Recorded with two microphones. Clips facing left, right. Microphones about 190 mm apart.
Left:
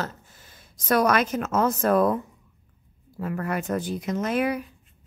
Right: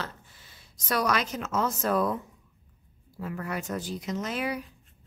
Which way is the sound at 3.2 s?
55° left (ahead or behind).